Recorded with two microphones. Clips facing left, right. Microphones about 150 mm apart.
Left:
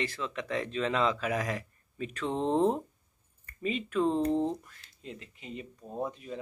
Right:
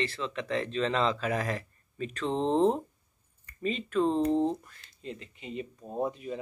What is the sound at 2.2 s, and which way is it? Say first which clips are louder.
Speech: right 2 dB; 20° right (ahead or behind).